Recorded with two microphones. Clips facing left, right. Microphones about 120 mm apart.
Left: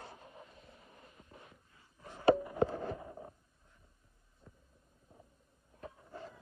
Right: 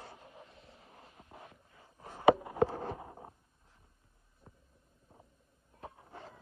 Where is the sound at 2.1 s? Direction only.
30° right (ahead or behind).